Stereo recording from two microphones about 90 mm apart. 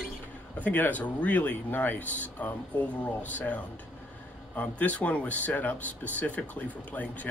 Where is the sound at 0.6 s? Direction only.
20° left (ahead or behind).